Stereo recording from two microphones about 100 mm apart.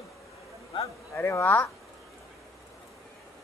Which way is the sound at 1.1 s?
25° left (ahead or behind).